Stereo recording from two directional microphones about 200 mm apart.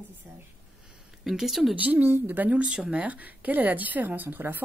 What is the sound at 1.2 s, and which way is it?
Speech, centre (ahead or behind).